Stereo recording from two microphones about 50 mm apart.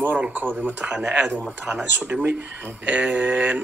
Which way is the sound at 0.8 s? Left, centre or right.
Right.